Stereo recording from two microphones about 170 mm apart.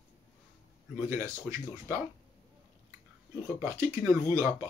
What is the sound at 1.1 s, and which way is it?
Speech, 15° right (ahead or behind).